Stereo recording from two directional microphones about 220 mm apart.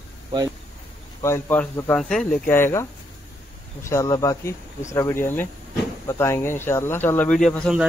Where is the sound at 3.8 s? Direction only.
15° left (ahead or behind).